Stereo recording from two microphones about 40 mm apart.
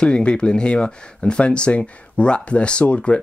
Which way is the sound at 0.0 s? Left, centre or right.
Left.